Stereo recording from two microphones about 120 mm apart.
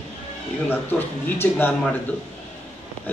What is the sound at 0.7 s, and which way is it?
A man's voice, 15° left (ahead or behind).